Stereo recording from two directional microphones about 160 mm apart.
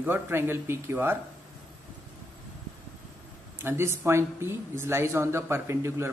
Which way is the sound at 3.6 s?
15° right (ahead or behind).